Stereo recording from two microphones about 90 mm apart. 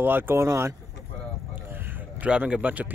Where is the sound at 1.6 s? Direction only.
20° right (ahead or behind).